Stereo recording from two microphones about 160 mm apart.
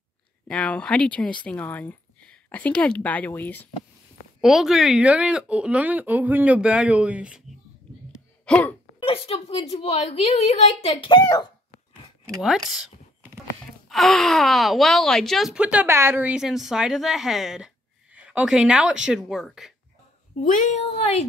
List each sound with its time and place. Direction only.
0.5 s speech: 5° left (ahead or behind)
4.4 s speech: centre (ahead or behind)
8.5 s a sound: 5° left (ahead or behind)
9.0 s a woman's voice: 35° left (ahead or behind)
12.4 s speech: centre (ahead or behind)
20.4 s a woman's voice: 50° left (ahead or behind)